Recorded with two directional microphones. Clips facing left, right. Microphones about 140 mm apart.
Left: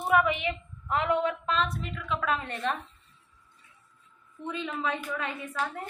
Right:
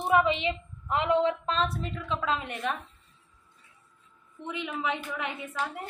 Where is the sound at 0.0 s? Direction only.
25° right (ahead or behind).